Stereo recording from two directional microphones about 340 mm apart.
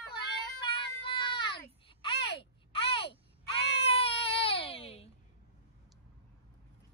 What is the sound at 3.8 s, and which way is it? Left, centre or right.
Baby cry, centre.